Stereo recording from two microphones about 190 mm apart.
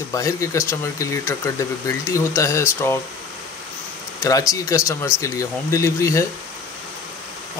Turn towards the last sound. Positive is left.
turn(degrees=15)  # may be behind; listen again after turning